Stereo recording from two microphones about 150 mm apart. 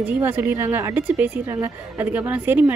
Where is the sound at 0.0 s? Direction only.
10° right (ahead or behind).